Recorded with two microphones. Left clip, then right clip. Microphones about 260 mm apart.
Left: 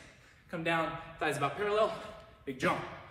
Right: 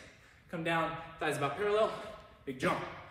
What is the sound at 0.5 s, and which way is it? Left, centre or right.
A man's voice, centre.